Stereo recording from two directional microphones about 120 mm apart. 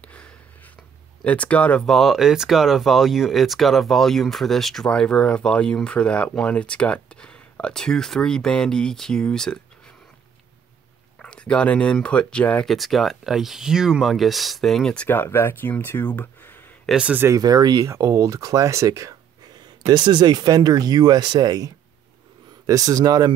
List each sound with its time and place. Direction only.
1.2 s speech: 10° left (ahead or behind)
11.1 s speech: 10° left (ahead or behind)
15.0 s speech: 20° left (ahead or behind)
16.9 s speech: 10° right (ahead or behind)
17.4 s speech: 35° right (ahead or behind)
19.9 s speech: 35° right (ahead or behind)